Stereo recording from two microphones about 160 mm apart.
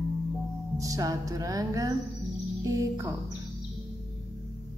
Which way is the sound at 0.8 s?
20° right (ahead or behind).